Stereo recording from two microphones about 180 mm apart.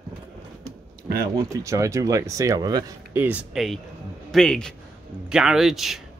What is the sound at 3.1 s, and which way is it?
Speech, 10° right (ahead or behind).